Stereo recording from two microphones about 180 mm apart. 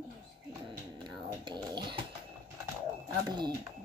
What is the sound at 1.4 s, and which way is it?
Speech, 25° right (ahead or behind).